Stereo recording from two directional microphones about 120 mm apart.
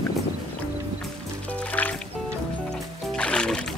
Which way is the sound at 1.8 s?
15° left (ahead or behind).